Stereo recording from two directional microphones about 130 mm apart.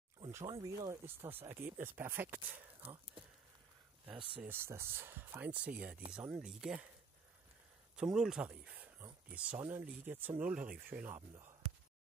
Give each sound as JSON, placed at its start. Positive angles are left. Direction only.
{"t": 0.3, "sound": "speech", "side_deg": -25}
{"t": 4.4, "sound": "speech", "side_deg": -15}
{"t": 7.9, "sound": "speech", "side_deg": -5}